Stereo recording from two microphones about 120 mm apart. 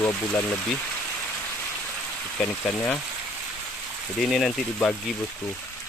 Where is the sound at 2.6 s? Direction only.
10° left (ahead or behind).